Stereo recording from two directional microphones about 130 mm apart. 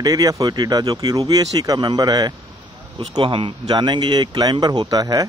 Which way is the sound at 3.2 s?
40° right (ahead or behind).